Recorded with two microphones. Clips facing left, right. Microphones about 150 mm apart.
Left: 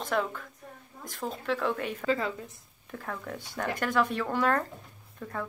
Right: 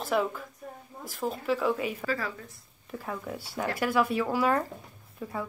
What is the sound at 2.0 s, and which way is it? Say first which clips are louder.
Speech: left 3 dB; 25° left (ahead or behind).